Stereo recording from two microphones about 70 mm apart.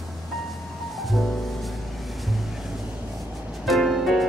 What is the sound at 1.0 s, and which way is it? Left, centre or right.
Music, centre.